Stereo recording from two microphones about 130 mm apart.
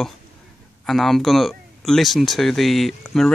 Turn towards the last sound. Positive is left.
turn(degrees=0)  # may be behind; listen again after turning